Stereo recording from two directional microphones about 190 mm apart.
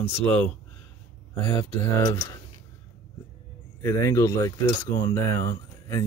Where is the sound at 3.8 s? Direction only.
15° left (ahead or behind).